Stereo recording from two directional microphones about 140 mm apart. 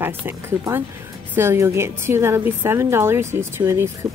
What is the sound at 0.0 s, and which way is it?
A woman's voice, 15° right (ahead or behind).